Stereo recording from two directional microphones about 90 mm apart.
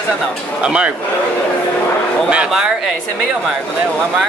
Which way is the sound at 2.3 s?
10° right (ahead or behind).